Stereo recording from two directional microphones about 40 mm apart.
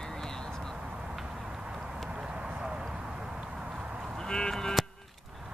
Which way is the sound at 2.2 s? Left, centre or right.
Right.